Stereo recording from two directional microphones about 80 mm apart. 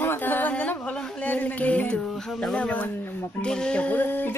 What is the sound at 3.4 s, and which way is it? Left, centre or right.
Speech, centre.